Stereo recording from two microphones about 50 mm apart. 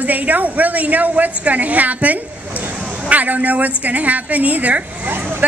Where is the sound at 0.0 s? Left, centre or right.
Right.